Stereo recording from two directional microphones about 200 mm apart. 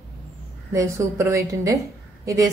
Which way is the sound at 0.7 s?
15° right (ahead or behind).